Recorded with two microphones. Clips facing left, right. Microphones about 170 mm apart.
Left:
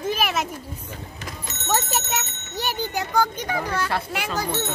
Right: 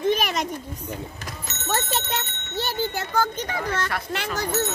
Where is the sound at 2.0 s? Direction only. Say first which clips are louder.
Even; 15° left (ahead or behind).